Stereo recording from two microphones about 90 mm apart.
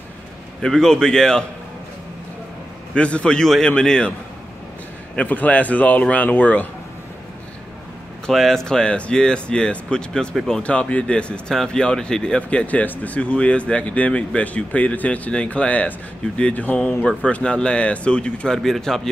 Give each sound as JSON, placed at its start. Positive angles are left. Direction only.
{"t": 0.6, "sound": "speech", "side_deg": 5}
{"t": 2.9, "sound": "speech", "side_deg": 10}
{"t": 5.1, "sound": "speech", "side_deg": 15}
{"t": 8.3, "sound": "speech", "side_deg": 0}
{"t": 10.6, "sound": "speech", "side_deg": 15}